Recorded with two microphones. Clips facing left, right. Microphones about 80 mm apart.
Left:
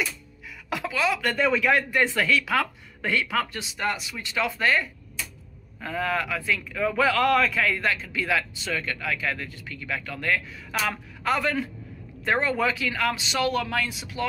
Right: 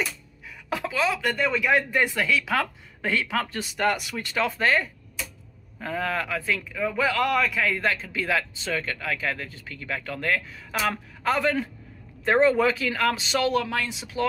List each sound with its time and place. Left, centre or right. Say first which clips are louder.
0.7 s a man's voice: even; right
3.7 s a man's voice: right 4 dB; right
6.7 s a man's voice: left 3 dB; centre; by 13.5 s right
13.5 s speech: right 1 dB; right